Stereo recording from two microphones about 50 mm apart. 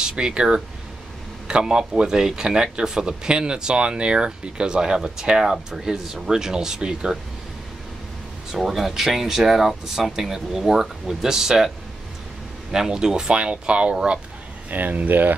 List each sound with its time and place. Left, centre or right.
0.0 s speech: centre
8.5 s speech: centre
12.7 s speech: centre
14.7 s speech: right